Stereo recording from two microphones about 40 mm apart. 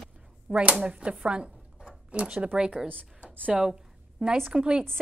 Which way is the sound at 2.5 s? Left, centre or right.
Centre.